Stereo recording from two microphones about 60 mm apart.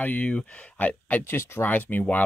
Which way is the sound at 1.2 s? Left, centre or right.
Left.